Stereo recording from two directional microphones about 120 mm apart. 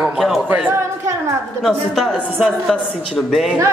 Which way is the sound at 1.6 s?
Centre (ahead or behind).